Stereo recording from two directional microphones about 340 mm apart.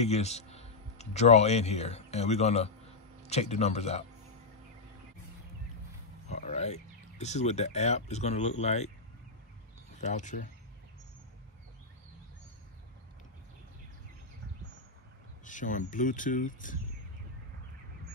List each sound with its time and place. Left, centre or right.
0.0 s speech: centre
6.2 s speech: centre
9.9 s speech: left
15.4 s speech: left